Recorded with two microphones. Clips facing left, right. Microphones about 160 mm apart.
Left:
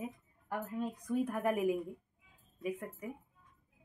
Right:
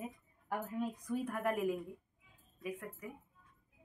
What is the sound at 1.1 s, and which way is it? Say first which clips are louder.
Speech: left 4 dB; 5° left (ahead or behind).